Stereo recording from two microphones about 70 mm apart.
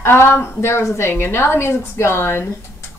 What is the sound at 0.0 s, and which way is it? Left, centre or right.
Speech, left.